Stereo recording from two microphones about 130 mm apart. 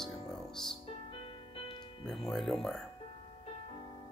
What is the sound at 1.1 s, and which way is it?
Music, 45° left (ahead or behind).